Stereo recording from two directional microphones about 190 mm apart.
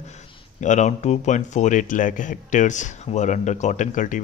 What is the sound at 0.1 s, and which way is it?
Speech, 40° left (ahead or behind).